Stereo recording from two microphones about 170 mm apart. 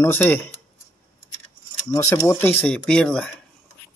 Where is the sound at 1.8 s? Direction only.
15° left (ahead or behind).